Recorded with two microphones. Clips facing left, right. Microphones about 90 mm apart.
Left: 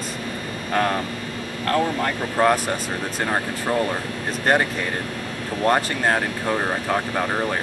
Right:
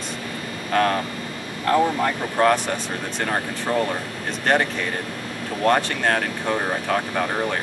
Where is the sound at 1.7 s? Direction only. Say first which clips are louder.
Right 3 dB; 15° right (ahead or behind).